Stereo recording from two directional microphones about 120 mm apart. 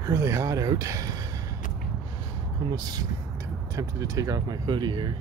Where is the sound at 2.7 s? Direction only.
35° right (ahead or behind).